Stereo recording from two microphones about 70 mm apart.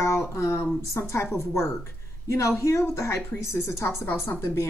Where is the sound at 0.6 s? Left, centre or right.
Left.